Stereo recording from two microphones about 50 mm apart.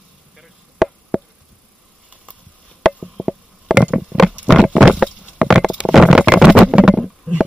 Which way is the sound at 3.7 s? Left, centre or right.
Centre.